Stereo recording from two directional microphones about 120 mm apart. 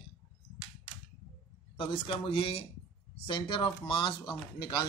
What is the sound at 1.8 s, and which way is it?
Speech, 50° left (ahead or behind).